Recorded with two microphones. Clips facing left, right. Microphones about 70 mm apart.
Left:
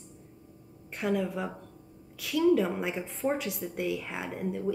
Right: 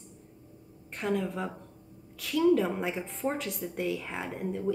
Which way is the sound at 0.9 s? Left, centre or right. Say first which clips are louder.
Left 1 dB; centre.